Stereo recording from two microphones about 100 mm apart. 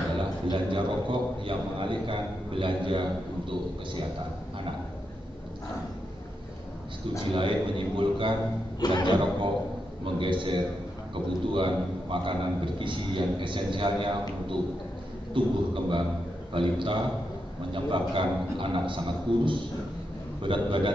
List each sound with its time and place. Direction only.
0.2 s a man's voice: 55° right (ahead or behind)
7.3 s a man's voice: 55° right (ahead or behind)
8.8 s speech: 50° left (ahead or behind)
10.0 s a man's voice: 55° right (ahead or behind)